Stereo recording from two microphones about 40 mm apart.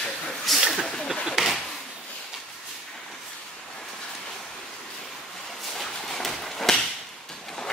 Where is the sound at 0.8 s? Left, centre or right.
Centre.